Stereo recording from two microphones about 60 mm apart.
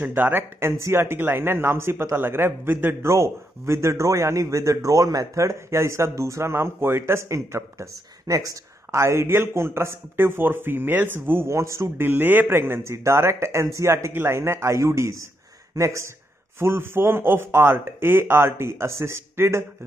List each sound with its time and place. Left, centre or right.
0.0 s a man's voice: right
3.0 s a man's voice: right
12.0 s a man's voice: right
16.5 s a man's voice: right